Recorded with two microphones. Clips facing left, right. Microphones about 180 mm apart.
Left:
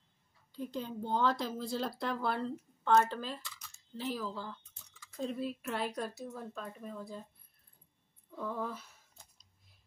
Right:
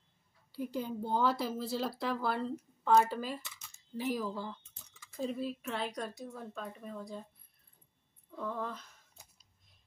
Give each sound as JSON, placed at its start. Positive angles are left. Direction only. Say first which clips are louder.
{"t": 0.5, "sound": "speech", "louder": "right 2 dB", "side_deg": -10}
{"t": 3.4, "sound": "a sound", "louder": "left 2 dB", "side_deg": -25}
{"t": 3.9, "sound": "speech", "louder": "right 3 dB", "side_deg": -10}
{"t": 8.4, "sound": "speech", "louder": "even", "side_deg": 5}